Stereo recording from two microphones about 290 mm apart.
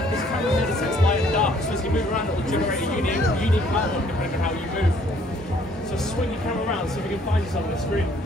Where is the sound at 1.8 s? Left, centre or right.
Left.